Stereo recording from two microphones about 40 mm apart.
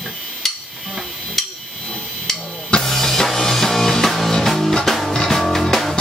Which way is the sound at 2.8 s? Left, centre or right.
Centre.